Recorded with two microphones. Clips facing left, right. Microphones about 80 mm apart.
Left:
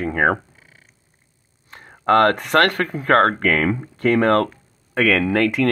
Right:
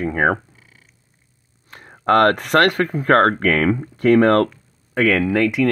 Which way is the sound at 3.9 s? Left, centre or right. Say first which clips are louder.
Right 3 dB; left.